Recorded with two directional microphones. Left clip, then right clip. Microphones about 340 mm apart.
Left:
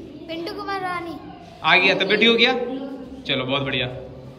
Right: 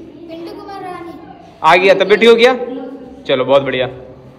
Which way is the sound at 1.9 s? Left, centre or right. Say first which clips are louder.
Right 9 dB; centre.